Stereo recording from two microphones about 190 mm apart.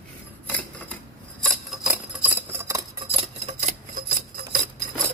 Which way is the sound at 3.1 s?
30° right (ahead or behind).